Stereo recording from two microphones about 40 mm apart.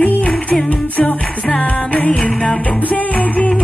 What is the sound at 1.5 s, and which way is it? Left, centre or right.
Music, left.